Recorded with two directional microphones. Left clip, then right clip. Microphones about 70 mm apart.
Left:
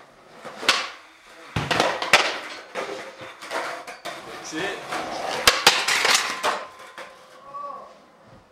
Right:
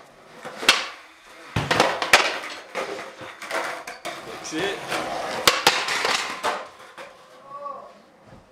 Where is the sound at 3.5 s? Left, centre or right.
Centre.